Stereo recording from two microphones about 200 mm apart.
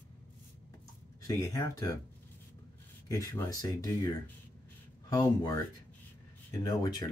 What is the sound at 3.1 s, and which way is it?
Speech, 20° left (ahead or behind).